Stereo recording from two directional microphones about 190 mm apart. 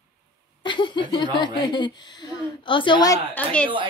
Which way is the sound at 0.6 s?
25° left (ahead or behind).